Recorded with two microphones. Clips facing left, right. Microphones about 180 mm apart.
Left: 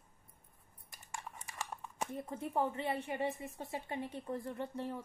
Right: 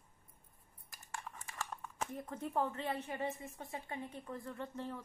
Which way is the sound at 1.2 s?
10° left (ahead or behind).